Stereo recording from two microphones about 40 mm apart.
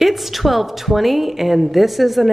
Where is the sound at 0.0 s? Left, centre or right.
Centre.